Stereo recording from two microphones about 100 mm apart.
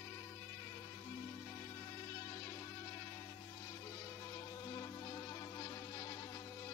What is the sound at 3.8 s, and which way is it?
Music, 35° left (ahead or behind).